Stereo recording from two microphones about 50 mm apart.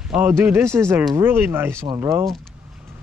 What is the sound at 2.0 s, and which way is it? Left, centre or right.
Speech, right.